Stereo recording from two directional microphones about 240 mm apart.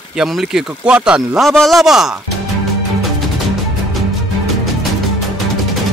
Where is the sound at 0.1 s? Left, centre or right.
Centre.